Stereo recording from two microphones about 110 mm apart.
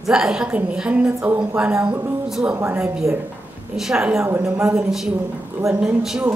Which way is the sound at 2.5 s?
20° right (ahead or behind).